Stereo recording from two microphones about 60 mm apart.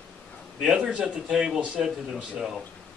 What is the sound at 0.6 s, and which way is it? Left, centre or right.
A man's voice, centre.